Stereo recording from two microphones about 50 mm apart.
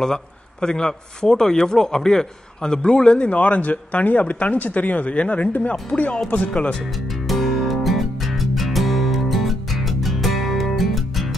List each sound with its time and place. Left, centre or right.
0.0 s speech: centre
3.3 s speech: left
7.1 s music: centre